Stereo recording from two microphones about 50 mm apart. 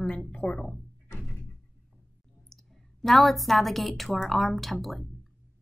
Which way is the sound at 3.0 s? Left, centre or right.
Centre.